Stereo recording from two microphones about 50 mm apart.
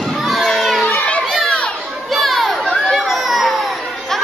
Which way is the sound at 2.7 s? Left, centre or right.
Centre.